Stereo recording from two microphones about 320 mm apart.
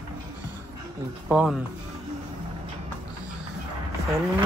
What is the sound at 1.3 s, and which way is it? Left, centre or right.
Speech, centre.